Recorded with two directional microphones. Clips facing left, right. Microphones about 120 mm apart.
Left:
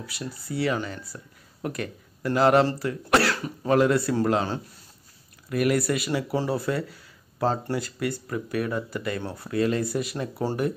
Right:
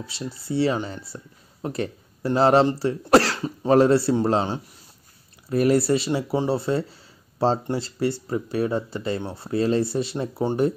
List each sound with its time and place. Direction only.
0.0 s speech: 25° right (ahead or behind)